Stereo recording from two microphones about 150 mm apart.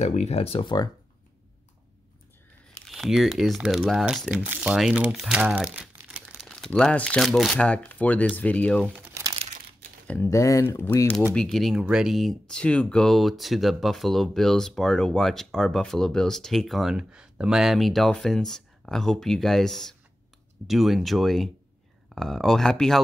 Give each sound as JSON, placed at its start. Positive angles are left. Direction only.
{"t": 0.0, "sound": "speech", "side_deg": 45}
{"t": 2.9, "sound": "speech", "side_deg": 0}
{"t": 8.9, "sound": "crumpling", "side_deg": -10}
{"t": 10.0, "sound": "speech", "side_deg": 15}